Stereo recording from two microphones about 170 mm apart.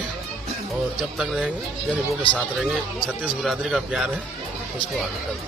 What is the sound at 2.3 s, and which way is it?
Speech, 30° left (ahead or behind).